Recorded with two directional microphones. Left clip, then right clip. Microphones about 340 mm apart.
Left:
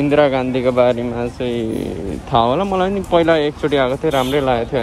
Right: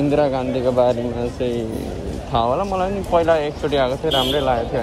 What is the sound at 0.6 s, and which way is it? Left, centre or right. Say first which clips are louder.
Speech: left 2 dB; left.